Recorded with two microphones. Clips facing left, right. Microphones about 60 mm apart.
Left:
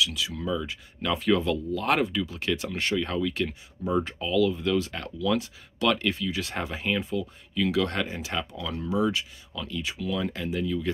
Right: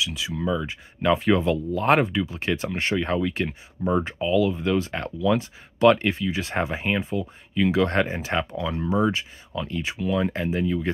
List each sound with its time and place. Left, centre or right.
0.0 s speech: right